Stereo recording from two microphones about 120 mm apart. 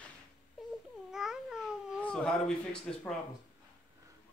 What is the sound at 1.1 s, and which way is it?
Babbling, 5° right (ahead or behind).